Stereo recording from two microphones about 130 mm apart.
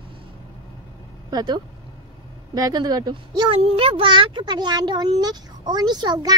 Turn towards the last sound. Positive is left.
turn(degrees=-30)  # may be behind; listen again after turning